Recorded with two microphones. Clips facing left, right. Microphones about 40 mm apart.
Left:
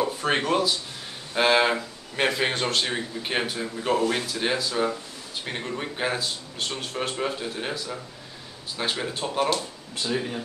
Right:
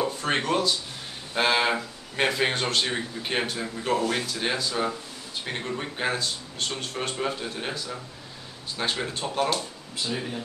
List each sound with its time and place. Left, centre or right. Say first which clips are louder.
0.0 s speech: left 2 dB; centre